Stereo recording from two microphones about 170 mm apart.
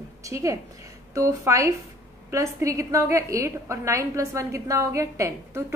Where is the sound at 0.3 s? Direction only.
20° right (ahead or behind).